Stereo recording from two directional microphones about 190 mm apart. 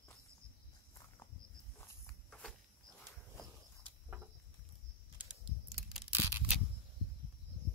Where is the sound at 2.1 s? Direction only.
5° left (ahead or behind).